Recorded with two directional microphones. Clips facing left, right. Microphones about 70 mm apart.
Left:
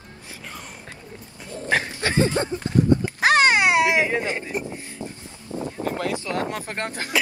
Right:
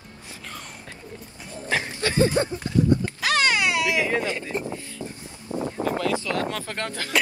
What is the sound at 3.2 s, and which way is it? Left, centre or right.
Baby cry, left.